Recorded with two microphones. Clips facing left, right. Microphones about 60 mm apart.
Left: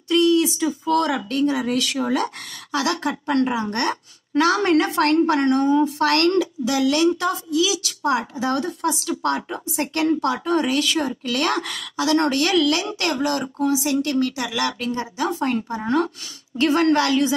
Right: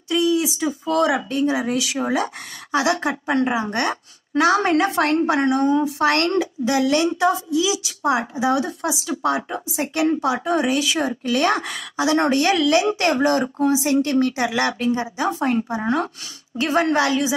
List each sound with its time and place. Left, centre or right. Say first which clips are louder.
0.1 s a sound: left 2 dB; centre
0.6 s a woman's voice: even; centre
1.1 s a woman's voice: right 1 dB; centre
4.3 s a woman's voice: right 1 dB; centre
6.0 s a woman's voice: left 1 dB; right
14.9 s a woman's voice: right 3 dB; centre
16.5 s a woman's voice: left 1 dB; centre